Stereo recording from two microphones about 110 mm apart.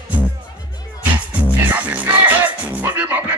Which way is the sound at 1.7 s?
15° right (ahead or behind).